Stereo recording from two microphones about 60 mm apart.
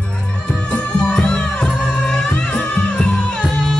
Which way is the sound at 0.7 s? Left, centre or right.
Centre.